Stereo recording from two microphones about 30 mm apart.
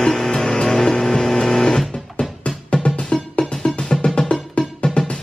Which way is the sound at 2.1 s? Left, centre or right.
Left.